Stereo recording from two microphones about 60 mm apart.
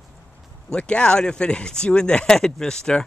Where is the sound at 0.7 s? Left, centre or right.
Centre.